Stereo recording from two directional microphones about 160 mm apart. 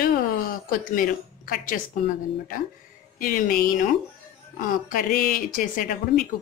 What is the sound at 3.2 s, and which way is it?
Speech, 60° left (ahead or behind).